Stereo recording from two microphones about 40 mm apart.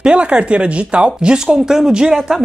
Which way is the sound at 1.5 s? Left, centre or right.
Centre.